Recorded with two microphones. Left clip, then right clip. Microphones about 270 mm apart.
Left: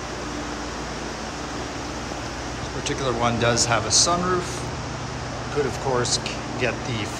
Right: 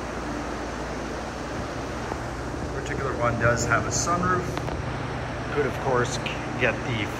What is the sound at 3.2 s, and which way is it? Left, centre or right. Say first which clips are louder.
Speech: left 1 dB; centre.